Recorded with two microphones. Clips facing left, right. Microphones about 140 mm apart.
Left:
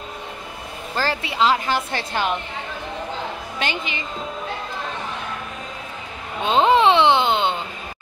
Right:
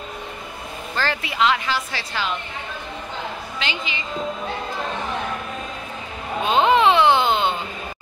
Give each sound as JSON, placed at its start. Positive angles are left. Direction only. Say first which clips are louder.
{"t": 0.9, "sound": "speech", "louder": "left 1 dB", "side_deg": 30}
{"t": 1.7, "sound": "a woman's voice", "louder": "left 3 dB", "side_deg": 50}
{"t": 3.5, "sound": "a woman's voice", "louder": "left 4 dB", "side_deg": 50}
{"t": 6.4, "sound": "a sound", "louder": "left 1 dB", "side_deg": 30}